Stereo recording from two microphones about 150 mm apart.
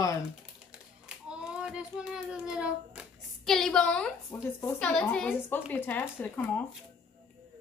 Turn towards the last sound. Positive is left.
turn(degrees=10)  # may be behind; listen again after turning